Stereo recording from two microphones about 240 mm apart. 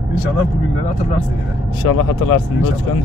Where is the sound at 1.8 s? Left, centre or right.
Left.